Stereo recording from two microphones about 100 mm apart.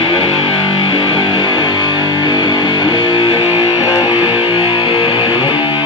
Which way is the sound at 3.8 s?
40° left (ahead or behind).